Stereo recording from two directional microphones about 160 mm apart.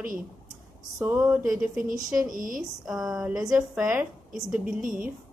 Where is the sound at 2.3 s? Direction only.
55° right (ahead or behind).